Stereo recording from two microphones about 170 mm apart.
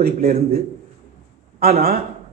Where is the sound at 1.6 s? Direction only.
60° right (ahead or behind).